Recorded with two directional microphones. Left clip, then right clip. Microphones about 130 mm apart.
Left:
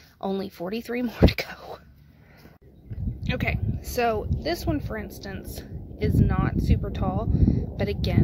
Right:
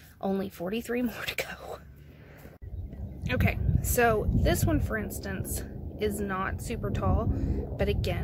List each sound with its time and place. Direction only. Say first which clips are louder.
0.2 s speech: left 2 dB; 40° left (ahead or behind)
3.3 s speech: left 2 dB; 30° left (ahead or behind)